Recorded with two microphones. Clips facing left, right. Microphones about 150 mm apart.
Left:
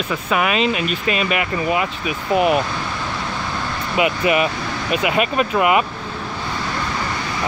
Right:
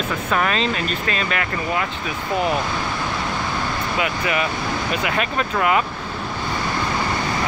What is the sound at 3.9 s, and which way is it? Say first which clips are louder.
Speech: left 7 dB; 20° left (ahead or behind).